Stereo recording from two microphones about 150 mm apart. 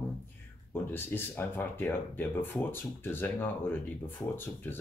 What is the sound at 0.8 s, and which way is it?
Speech, 15° left (ahead or behind).